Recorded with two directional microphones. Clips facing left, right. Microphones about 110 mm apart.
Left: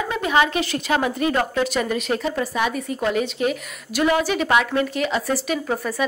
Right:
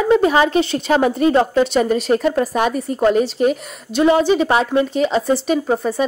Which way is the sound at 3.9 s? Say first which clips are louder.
Right 6 dB; 25° right (ahead or behind).